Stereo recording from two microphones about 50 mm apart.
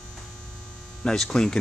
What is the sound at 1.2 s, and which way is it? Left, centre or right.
Speech, centre.